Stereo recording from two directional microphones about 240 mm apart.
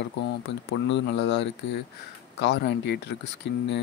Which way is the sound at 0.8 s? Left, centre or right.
Left.